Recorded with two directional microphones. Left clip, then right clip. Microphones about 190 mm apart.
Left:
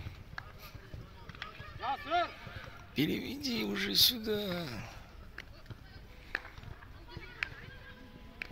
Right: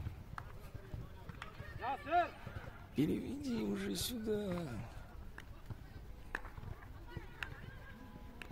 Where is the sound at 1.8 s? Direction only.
35° left (ahead or behind).